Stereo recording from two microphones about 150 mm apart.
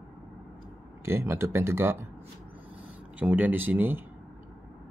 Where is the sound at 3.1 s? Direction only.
10° right (ahead or behind).